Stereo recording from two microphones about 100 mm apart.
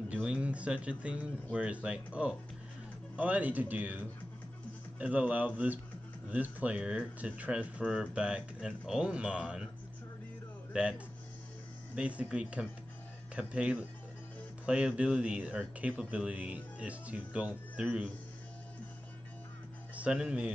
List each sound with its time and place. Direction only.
0.1 s speech: 10° right (ahead or behind)
10.7 s speech: 10° right (ahead or behind)
20.0 s speech: 10° right (ahead or behind)